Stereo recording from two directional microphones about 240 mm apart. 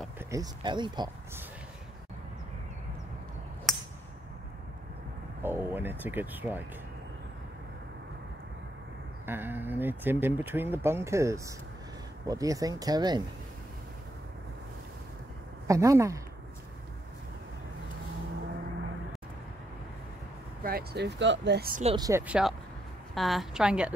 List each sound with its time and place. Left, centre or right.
0.3 s speech: centre
3.7 s a sound: centre
5.4 s speech: centre
9.2 s speech: centre
15.6 s speech: centre
20.6 s speech: right
21.9 s a woman's voice: centre